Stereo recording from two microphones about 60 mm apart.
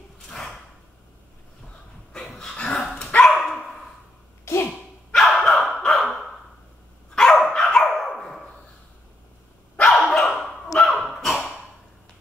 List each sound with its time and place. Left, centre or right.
0.3 s a sound: centre
2.1 s dog: centre
4.6 s dog: centre
5.8 s a sound: centre
7.2 s dog: centre
9.8 s dog: centre